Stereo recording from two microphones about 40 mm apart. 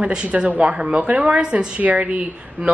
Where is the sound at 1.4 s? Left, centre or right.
Right.